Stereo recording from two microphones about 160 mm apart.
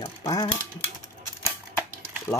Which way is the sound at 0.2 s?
25° left (ahead or behind).